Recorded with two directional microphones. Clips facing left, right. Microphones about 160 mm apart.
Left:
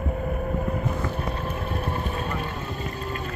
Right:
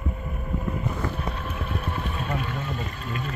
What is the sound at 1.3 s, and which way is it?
Boat, 35° left (ahead or behind).